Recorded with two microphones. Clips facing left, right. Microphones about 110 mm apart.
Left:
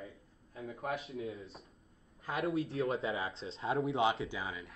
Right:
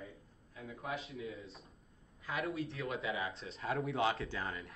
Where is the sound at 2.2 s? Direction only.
35° left (ahead or behind).